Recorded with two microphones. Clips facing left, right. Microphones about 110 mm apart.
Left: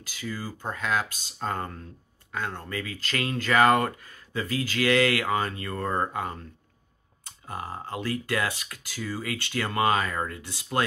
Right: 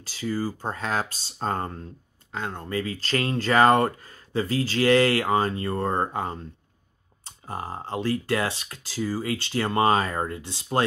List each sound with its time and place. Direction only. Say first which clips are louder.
0.0 s speech: right 7 dB; 35° right (ahead or behind)